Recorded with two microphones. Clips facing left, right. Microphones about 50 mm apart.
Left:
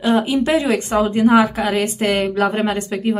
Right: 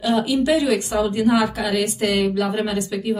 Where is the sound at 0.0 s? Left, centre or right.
Left.